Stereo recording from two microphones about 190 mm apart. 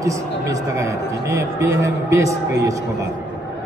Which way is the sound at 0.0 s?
15° right (ahead or behind).